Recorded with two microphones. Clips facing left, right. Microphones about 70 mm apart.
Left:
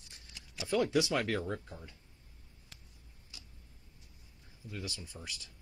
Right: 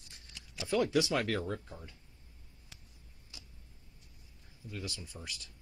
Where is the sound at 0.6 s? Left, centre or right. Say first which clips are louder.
Even; centre.